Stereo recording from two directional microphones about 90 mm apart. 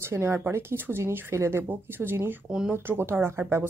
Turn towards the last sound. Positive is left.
turn(degrees=-30)  # may be behind; listen again after turning